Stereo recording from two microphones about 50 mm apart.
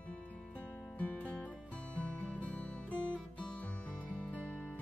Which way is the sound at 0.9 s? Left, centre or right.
Left.